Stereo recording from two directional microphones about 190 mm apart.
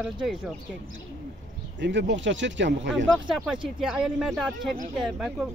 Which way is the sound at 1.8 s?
70° right (ahead or behind).